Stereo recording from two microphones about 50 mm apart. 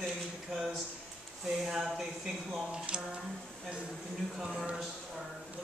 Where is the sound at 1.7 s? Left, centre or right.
Centre.